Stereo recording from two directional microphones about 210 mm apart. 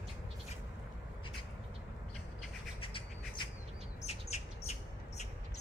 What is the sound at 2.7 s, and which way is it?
Bird, 25° left (ahead or behind).